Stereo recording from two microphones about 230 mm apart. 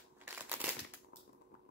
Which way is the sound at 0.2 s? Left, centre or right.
Centre.